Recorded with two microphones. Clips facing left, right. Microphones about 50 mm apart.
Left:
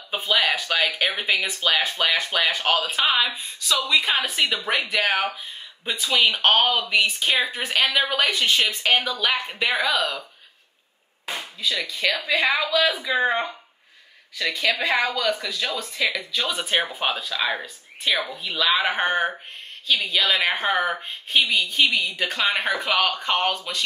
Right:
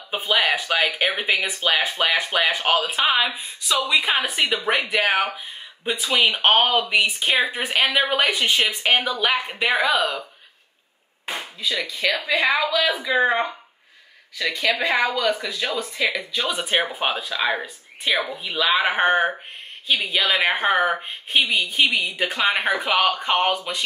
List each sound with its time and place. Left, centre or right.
0.1 s a woman's voice: centre
11.6 s a woman's voice: centre; by 22.4 s right
22.4 s speech: centre
23.2 s speech: centre